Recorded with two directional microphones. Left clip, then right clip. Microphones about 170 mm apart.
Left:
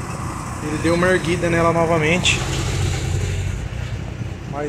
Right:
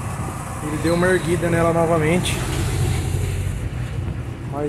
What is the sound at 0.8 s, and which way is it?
Speech, 15° right (ahead or behind).